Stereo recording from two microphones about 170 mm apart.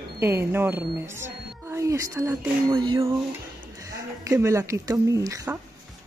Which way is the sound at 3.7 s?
20° right (ahead or behind).